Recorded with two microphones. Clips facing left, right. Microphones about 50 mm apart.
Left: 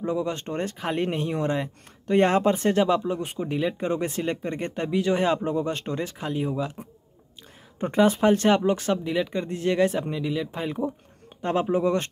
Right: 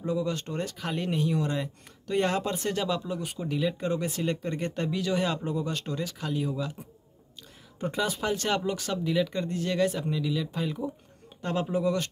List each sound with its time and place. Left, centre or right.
0.0 s speech: left
7.8 s speech: left